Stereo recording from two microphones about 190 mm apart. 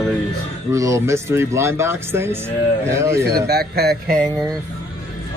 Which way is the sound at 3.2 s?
55° right (ahead or behind).